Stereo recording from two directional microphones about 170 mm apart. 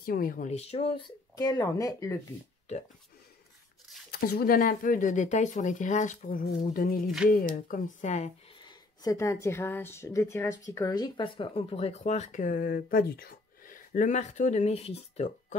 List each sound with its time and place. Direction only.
0.0 s speech: 55° left (ahead or behind); by 1.0 s 35° left (ahead or behind)
1.3 s speech: 20° left (ahead or behind)
4.1 s speech: 65° left (ahead or behind); by 8.3 s 45° left (ahead or behind)
8.6 s speech: 20° left (ahead or behind); by 15.3 s 40° left (ahead or behind)